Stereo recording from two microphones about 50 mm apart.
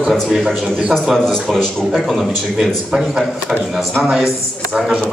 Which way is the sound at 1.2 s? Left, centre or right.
Centre.